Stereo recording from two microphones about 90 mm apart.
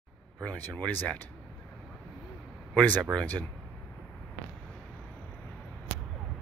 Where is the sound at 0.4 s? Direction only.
15° left (ahead or behind).